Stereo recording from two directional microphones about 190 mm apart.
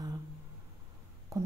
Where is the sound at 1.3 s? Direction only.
15° right (ahead or behind).